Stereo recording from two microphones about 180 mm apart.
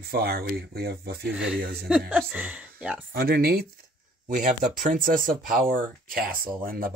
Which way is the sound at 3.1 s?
55° right (ahead or behind).